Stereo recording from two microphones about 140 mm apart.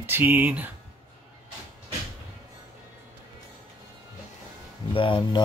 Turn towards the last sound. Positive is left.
turn(degrees=35)  # may be behind; listen again after turning